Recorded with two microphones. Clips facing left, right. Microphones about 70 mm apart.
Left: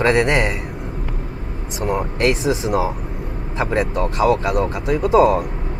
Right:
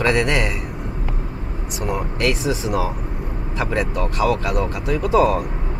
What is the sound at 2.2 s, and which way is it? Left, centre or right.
Speech, left.